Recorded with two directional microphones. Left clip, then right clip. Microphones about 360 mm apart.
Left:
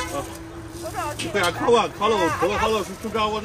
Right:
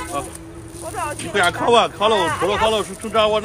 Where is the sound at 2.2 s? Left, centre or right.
Right.